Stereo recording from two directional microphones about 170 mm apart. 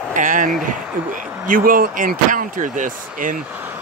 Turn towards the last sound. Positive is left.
turn(degrees=-10)  # may be behind; listen again after turning